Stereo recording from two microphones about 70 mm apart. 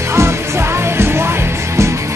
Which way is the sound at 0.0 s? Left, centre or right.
Right.